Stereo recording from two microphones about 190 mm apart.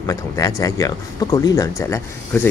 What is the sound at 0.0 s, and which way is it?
Speech, 15° left (ahead or behind).